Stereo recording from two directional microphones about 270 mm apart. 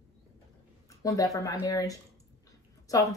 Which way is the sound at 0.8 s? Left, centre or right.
Centre.